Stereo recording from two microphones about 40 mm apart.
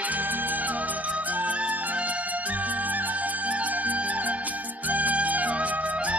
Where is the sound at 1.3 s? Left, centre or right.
Right.